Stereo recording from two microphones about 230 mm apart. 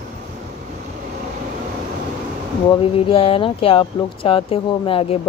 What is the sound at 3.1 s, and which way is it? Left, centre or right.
Speech, left.